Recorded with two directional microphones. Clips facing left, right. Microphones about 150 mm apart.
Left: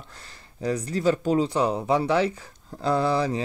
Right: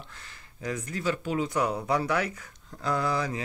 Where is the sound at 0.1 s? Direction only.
35° left (ahead or behind).